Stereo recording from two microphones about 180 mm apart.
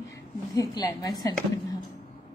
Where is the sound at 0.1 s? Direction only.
20° left (ahead or behind).